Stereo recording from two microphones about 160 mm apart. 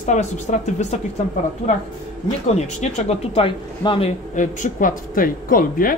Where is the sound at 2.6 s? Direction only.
45° left (ahead or behind).